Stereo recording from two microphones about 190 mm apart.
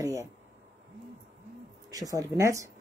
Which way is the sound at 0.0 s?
15° right (ahead or behind).